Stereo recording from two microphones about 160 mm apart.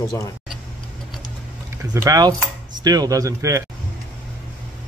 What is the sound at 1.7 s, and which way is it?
Speech, 20° right (ahead or behind).